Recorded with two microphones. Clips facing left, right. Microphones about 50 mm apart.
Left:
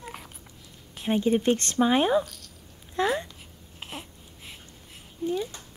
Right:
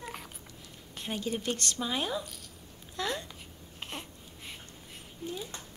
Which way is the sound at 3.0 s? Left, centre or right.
Left.